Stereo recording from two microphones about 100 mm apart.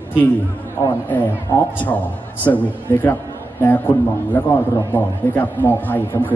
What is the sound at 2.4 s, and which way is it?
Speech, 20° left (ahead or behind).